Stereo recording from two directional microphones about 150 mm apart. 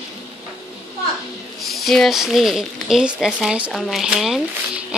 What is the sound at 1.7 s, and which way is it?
A woman's voice, centre (ahead or behind).